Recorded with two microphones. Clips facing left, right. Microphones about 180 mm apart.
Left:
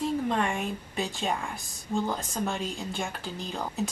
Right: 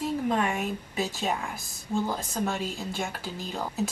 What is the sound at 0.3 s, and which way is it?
A woman's voice, 5° right (ahead or behind).